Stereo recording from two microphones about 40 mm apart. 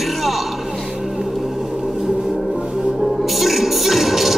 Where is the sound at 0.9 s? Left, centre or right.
Centre.